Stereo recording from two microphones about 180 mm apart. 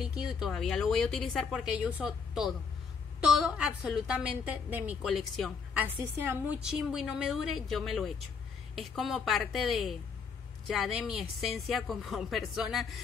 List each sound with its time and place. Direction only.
0.0 s a woman's voice: 5° right (ahead or behind)